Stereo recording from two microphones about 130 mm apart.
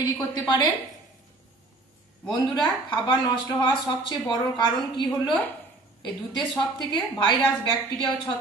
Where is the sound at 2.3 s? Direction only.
35° left (ahead or behind).